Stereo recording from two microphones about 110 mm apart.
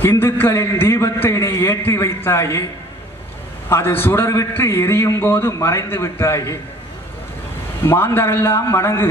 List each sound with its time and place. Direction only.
0.0 s a man's voice: 20° left (ahead or behind)
3.6 s a man's voice: 20° left (ahead or behind)
7.8 s a man's voice: 20° left (ahead or behind)